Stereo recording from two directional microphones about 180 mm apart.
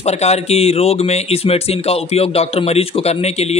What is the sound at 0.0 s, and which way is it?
Speech, 35° left (ahead or behind).